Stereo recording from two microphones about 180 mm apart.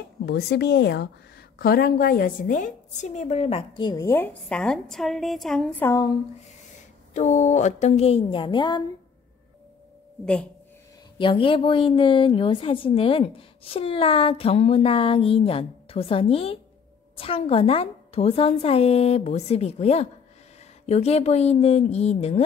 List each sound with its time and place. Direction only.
0.2 s a woman's voice: 65° left (ahead or behind); by 6.0 s 10° left (ahead or behind)
7.2 s a woman's voice: 40° left (ahead or behind); by 8.8 s 25° left (ahead or behind)
10.2 s speech: 5° left (ahead or behind)
11.1 s a woman's voice: 30° left (ahead or behind)